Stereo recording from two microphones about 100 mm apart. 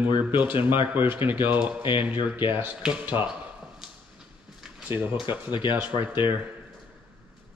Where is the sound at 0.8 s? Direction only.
20° right (ahead or behind).